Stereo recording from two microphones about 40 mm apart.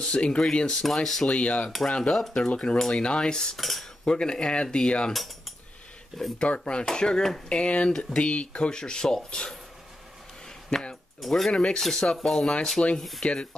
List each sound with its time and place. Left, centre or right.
0.1 s speech: left
0.7 s speech: centre
1.2 s speech: left
1.9 s speech: centre
3.5 s speech: centre
4.0 s speech: left
6.3 s speech: left
7.4 s speech: left
8.7 s speech: centre
10.7 s speech: centre
11.1 s speech: centre
11.5 s speech: left
11.8 s speech: centre